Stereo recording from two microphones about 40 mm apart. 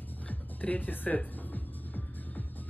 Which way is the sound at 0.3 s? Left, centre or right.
Left.